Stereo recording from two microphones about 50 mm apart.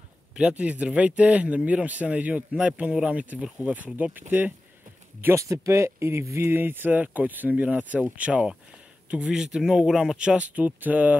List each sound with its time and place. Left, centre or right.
0.4 s speech: right
5.3 s speech: right
6.5 s speech: right; by 10.1 s centre
10.1 s speech: right